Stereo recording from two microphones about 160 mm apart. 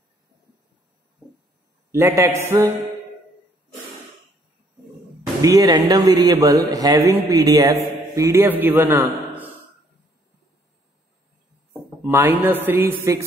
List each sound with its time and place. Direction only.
1.9 s a man's voice: 15° right (ahead or behind)
5.4 s a man's voice: 20° right (ahead or behind)
12.0 s a man's voice: 10° right (ahead or behind)